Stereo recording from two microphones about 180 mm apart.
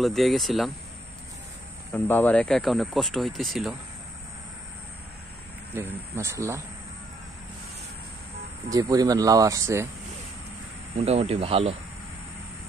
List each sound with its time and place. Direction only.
0.0 s speech: centre (ahead or behind)
2.0 s speech: 10° left (ahead or behind)
5.8 s speech: 15° right (ahead or behind)
8.6 s speech: 20° right (ahead or behind)
11.1 s speech: 35° right (ahead or behind)